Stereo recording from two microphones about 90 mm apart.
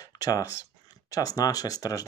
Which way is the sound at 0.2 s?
40° left (ahead or behind).